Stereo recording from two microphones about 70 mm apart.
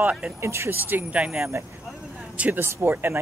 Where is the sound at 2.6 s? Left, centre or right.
Right.